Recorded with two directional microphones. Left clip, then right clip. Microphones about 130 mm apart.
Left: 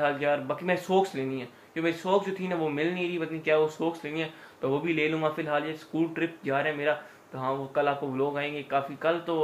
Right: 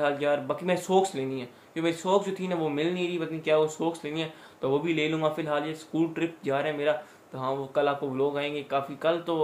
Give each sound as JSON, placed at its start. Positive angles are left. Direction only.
{"t": 0.0, "sound": "speech", "side_deg": -30}